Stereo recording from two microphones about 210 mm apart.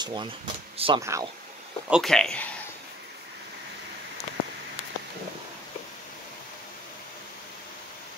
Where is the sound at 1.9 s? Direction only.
Centre (ahead or behind).